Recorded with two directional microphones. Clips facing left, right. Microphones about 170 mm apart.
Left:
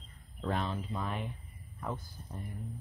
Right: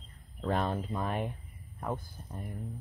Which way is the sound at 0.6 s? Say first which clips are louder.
Right 4 dB; 50° right (ahead or behind).